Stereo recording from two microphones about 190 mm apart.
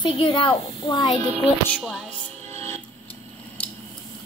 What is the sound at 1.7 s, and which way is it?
Music, centre (ahead or behind).